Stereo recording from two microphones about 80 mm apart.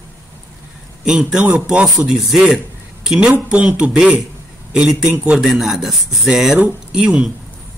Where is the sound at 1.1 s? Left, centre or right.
Centre.